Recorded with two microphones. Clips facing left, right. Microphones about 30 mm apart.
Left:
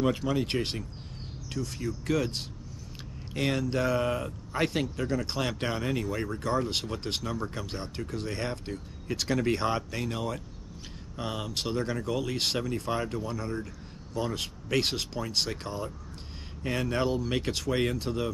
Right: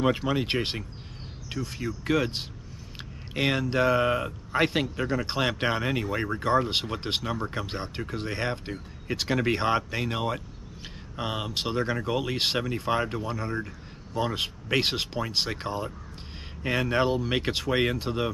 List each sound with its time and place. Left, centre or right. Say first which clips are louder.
0.0 s speech: right 2 dB; right